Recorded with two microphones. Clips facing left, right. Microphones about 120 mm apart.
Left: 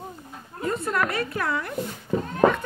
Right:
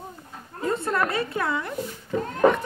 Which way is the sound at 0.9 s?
25° right (ahead or behind).